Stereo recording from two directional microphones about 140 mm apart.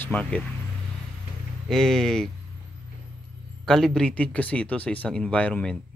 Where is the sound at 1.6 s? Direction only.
5° left (ahead or behind).